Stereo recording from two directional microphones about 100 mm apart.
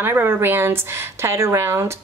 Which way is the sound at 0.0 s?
20° right (ahead or behind).